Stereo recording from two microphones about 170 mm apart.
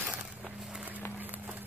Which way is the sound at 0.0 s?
5° right (ahead or behind).